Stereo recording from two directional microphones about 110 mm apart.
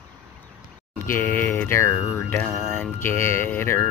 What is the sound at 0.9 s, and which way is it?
Speech, 20° left (ahead or behind).